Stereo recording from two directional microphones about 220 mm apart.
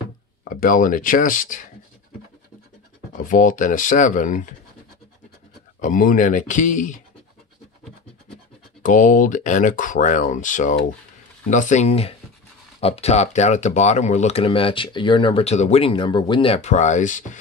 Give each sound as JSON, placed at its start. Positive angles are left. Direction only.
{"t": 0.5, "sound": "speech", "side_deg": 40}
{"t": 3.2, "sound": "speech", "side_deg": 35}
{"t": 5.8, "sound": "speech", "side_deg": 35}
{"t": 8.8, "sound": "speech", "side_deg": 35}